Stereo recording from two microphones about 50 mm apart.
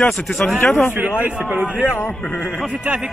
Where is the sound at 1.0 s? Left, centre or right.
Right.